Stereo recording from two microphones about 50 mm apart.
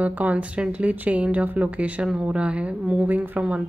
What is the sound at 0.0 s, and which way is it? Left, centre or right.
Speech, right.